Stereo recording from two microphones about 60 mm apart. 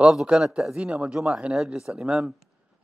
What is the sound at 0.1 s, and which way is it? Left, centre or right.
A man's voice, centre.